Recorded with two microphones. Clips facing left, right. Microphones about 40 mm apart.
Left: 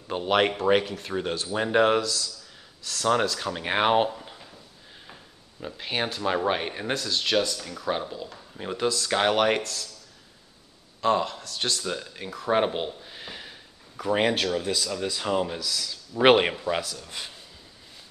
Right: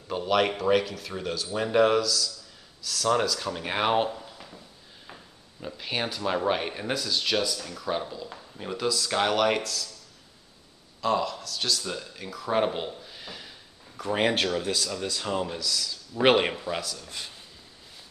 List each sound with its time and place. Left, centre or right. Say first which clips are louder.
0.1 s speech: left 1 dB; left
3.4 s speech: left 3 dB; centre
5.0 s a sound: even; centre
5.8 s speech: left 2 dB; centre
11.0 s speech: left 2 dB; left
11.8 s speech: left 3 dB; centre
12.2 s speech: left 2 dB; left
14.3 s speech: even; centre